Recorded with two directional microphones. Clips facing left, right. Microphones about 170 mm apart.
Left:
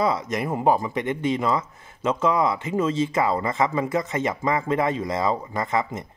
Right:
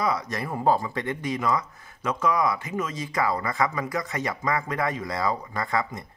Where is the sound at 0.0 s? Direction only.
25° left (ahead or behind).